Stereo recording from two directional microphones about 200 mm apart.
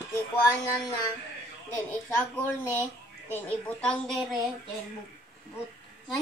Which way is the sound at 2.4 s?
10° left (ahead or behind).